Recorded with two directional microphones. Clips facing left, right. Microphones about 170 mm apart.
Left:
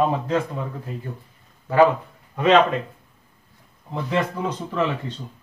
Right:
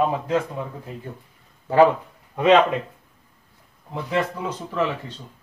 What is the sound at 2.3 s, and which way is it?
Speech, 15° right (ahead or behind).